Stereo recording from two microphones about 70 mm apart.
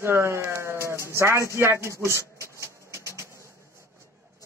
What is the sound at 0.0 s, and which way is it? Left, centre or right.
Speech, right.